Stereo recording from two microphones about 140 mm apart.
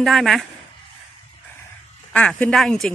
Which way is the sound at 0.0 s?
Centre (ahead or behind).